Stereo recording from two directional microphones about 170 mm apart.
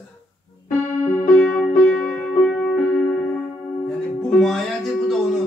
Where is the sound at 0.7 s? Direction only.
45° left (ahead or behind).